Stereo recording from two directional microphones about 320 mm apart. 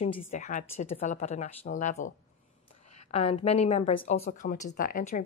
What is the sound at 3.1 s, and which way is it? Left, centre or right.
A woman's voice, centre.